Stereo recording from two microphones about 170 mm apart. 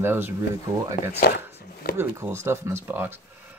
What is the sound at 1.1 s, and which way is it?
Chopping, 70° left (ahead or behind).